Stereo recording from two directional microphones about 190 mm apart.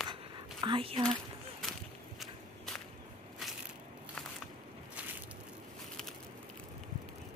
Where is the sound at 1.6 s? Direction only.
Centre (ahead or behind).